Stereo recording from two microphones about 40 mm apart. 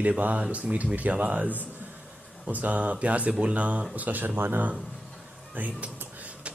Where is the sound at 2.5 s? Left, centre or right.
Right.